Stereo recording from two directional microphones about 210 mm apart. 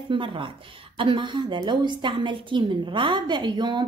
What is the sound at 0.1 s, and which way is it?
A woman's voice, 25° right (ahead or behind).